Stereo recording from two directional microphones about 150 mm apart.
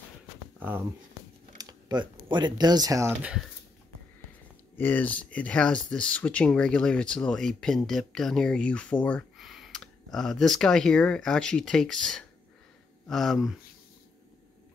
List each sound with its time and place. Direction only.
0.6 s speech: 10° right (ahead or behind)
1.6 s speech: 25° right (ahead or behind)
4.7 s speech: 10° left (ahead or behind)